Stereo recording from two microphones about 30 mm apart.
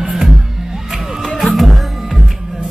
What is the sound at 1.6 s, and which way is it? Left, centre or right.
Music, centre.